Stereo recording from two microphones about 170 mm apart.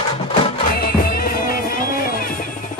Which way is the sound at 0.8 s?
65° left (ahead or behind).